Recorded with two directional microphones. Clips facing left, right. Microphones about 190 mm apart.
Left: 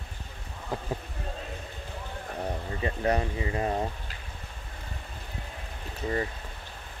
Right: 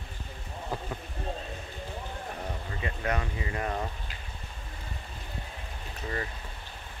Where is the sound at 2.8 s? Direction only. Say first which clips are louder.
Left 5 dB; 30° left (ahead or behind).